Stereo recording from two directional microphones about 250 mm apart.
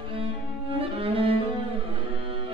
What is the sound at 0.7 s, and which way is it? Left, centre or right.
Music, right.